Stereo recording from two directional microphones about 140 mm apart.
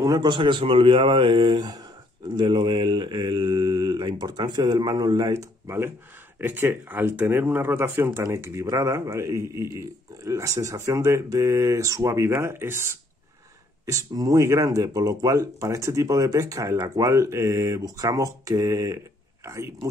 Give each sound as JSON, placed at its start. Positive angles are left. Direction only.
{"t": 0.0, "sound": "speech", "side_deg": -30}